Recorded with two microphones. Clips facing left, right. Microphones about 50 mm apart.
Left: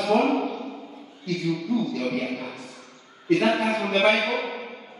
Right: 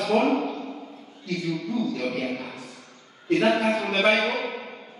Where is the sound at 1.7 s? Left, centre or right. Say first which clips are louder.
Left 3 dB; right.